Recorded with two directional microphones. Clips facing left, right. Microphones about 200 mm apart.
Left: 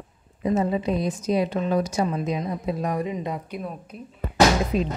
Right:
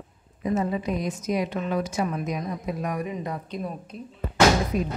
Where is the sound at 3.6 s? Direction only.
5° left (ahead or behind).